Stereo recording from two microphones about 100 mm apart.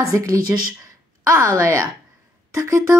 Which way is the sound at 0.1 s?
35° right (ahead or behind).